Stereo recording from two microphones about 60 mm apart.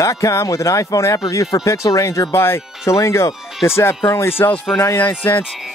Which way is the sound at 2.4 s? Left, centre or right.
Left.